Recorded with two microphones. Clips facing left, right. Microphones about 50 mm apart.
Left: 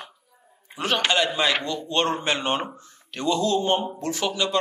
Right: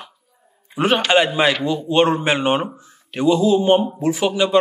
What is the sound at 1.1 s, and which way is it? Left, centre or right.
A man's voice, centre.